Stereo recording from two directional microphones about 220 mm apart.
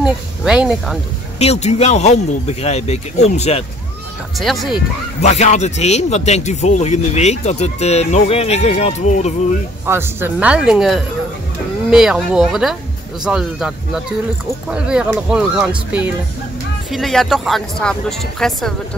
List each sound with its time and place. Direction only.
0.0 s speech: 5° right (ahead or behind)
1.4 s speech: 30° left (ahead or behind)
4.4 s speech: centre (ahead or behind)
5.2 s speech: 30° left (ahead or behind)
9.8 s speech: 10° right (ahead or behind)